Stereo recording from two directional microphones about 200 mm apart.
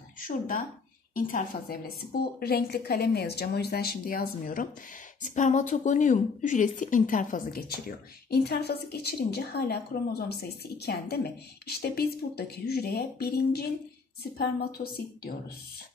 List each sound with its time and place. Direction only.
1.1 s a woman's voice: 45° left (ahead or behind)